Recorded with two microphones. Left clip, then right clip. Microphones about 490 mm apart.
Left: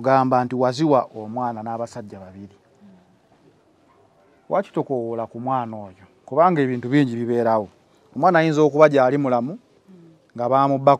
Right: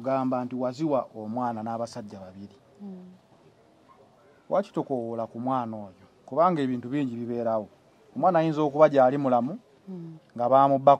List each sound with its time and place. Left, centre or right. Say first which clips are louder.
0.0 s speech: left 10 dB; left
4.5 s speech: left 5 dB; left